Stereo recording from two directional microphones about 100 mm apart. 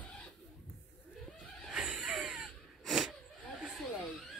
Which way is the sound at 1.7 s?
10° right (ahead or behind).